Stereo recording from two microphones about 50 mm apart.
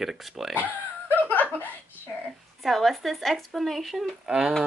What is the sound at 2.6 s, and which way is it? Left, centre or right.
Speech, centre.